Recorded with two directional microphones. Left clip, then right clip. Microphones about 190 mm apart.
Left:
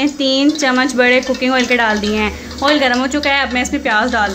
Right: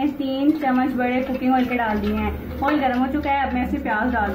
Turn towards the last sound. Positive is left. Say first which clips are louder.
# left 8 dB
turn(degrees=65)  # may be behind; listen again after turning